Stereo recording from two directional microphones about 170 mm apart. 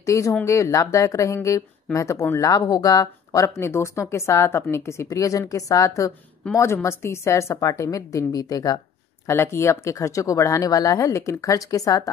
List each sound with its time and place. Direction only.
0.0 s a woman's voice: 20° left (ahead or behind)